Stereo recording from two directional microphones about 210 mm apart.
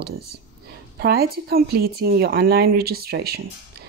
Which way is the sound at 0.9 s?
45° right (ahead or behind).